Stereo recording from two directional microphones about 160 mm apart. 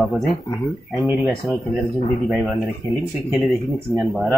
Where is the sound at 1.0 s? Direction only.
15° right (ahead or behind).